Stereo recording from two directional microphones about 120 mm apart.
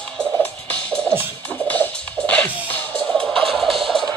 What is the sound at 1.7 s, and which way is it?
Music, 10° left (ahead or behind).